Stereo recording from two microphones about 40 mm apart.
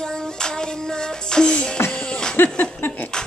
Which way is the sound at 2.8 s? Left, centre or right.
Left.